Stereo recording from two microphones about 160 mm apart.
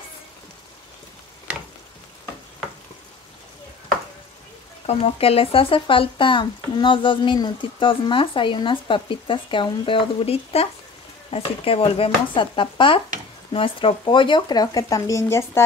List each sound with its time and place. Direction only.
4.8 s speech: 40° left (ahead or behind); by 15.6 s 15° left (ahead or behind)